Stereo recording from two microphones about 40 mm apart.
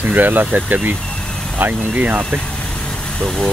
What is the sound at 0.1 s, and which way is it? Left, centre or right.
Speech, right.